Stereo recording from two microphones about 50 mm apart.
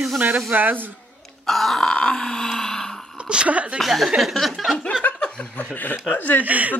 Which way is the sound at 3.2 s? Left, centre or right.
Right.